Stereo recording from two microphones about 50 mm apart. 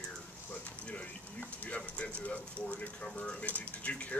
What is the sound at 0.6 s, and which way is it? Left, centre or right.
Speech, left.